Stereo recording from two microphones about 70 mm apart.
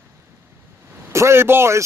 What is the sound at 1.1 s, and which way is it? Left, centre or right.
Speech, right.